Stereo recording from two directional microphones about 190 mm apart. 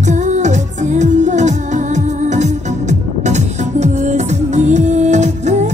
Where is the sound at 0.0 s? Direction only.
40° right (ahead or behind).